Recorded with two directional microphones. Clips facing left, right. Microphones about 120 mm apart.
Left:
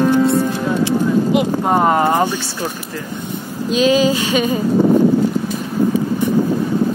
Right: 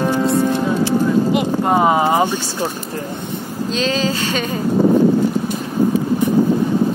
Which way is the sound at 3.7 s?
10° left (ahead or behind).